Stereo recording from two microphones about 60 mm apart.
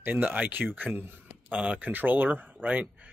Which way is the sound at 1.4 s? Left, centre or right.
Right.